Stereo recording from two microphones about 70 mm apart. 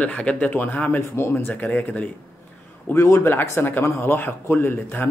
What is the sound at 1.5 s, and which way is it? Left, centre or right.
Speech, left.